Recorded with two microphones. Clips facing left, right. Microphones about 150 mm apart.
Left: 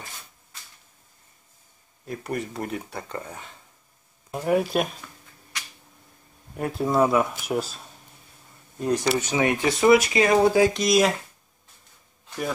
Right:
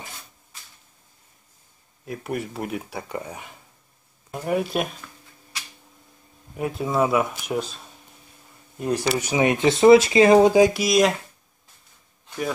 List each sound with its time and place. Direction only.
2.0 s speech: 5° right (ahead or behind)
4.3 s speech: 5° left (ahead or behind)
6.5 s speech: centre (ahead or behind)
8.7 s speech: 10° right (ahead or behind)
10.7 s speech: 5° right (ahead or behind)